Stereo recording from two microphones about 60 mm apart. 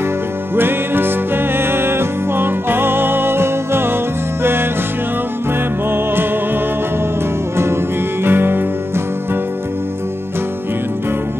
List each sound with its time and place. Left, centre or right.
0.6 s music: right
8.2 s music: right